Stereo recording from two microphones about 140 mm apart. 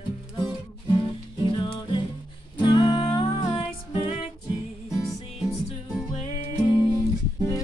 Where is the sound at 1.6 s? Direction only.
35° left (ahead or behind).